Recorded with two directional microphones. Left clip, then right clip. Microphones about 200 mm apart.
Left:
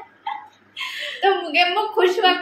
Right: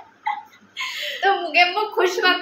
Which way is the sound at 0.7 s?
20° left (ahead or behind).